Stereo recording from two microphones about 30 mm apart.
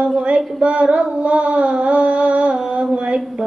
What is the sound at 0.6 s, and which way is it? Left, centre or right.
Child singing, right.